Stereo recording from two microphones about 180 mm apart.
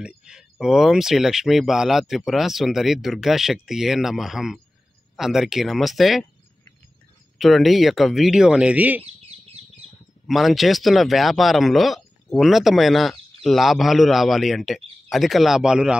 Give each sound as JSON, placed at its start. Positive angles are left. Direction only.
{"t": 0.2, "sound": "speech", "side_deg": -5}
{"t": 7.3, "sound": "speech", "side_deg": 0}
{"t": 9.0, "sound": "bird", "side_deg": -35}
{"t": 10.2, "sound": "speech", "side_deg": 0}